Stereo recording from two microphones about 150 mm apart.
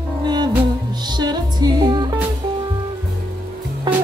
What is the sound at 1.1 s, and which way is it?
Music, 30° right (ahead or behind).